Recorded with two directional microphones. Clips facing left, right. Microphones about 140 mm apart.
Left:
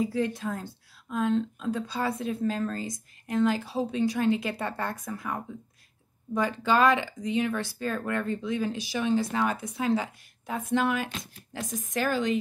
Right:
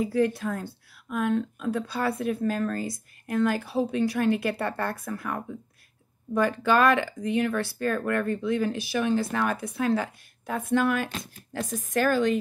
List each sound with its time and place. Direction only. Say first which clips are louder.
0.0 s speech: right 3 dB; 20° left (ahead or behind)